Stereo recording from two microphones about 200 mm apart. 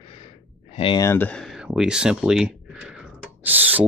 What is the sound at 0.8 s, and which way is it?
Speech, 25° left (ahead or behind).